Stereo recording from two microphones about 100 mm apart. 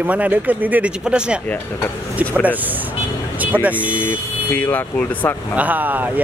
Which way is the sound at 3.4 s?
15° right (ahead or behind).